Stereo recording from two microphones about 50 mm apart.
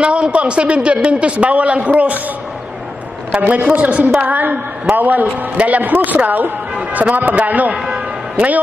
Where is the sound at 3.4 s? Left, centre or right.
Right.